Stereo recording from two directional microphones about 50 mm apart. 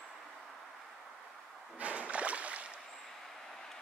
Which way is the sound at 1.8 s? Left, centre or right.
Right.